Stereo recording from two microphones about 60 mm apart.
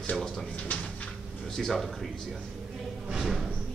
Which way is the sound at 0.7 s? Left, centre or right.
Left.